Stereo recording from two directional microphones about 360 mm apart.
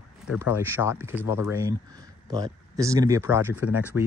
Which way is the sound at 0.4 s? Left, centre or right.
Centre.